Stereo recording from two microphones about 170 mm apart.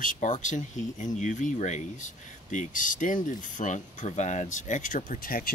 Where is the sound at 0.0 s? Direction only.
50° left (ahead or behind).